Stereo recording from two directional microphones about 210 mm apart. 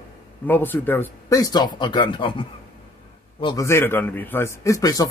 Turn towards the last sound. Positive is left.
turn(degrees=15)  # may be behind; listen again after turning